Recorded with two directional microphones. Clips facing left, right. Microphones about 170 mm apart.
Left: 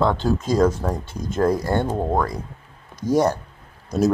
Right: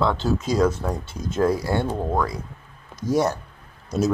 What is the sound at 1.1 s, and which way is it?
Speech, 5° right (ahead or behind).